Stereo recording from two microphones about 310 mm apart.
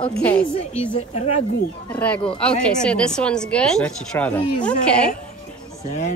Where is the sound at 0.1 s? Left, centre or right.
Centre.